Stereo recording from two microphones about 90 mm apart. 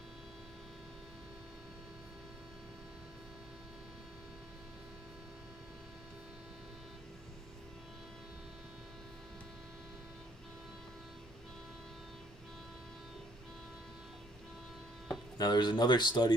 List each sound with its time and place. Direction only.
15.3 s speech: 50° left (ahead or behind)